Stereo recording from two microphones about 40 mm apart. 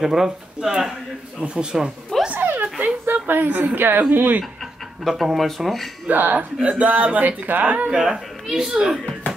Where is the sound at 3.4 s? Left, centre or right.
Right.